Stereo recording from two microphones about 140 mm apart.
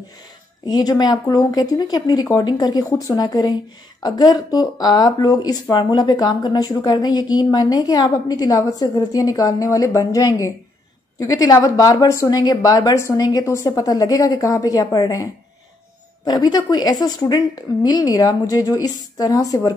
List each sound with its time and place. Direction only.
0.7 s speech: 30° left (ahead or behind)
16.3 s speech: 30° left (ahead or behind)